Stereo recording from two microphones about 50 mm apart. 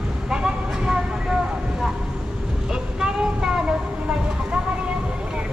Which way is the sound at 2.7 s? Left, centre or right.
Centre.